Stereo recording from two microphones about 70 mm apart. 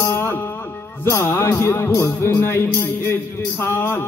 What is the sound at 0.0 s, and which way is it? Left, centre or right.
Music, left.